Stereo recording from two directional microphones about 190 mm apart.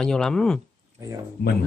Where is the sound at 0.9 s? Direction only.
15° right (ahead or behind).